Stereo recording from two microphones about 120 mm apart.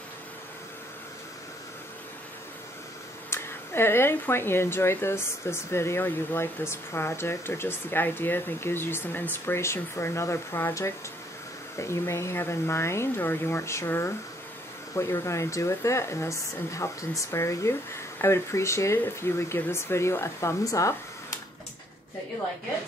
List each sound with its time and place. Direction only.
3.3 s speech: 20° left (ahead or behind)